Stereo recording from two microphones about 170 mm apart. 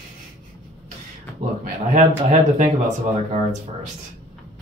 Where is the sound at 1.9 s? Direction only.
50° right (ahead or behind).